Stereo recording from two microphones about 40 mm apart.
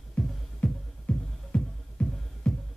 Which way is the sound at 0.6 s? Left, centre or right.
Left.